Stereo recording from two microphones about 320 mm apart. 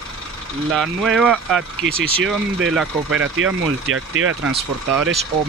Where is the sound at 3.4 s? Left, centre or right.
Right.